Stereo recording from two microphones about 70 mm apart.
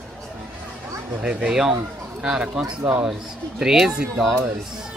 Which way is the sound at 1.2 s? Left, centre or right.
Centre.